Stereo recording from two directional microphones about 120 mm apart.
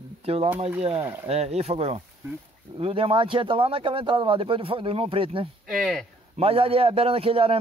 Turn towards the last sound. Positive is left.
turn(degrees=-50)  # may be behind; listen again after turning